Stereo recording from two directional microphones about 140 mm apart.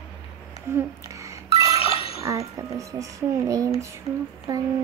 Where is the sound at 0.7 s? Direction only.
20° right (ahead or behind).